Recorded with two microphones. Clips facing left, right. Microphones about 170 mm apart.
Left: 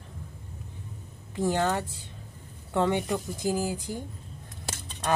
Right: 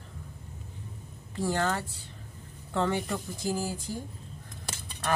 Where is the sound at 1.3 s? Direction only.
20° left (ahead or behind).